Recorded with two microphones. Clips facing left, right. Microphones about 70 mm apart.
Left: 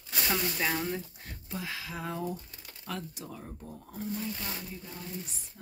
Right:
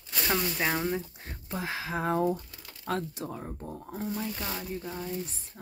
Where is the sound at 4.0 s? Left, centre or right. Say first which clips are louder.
Right 2 dB; right.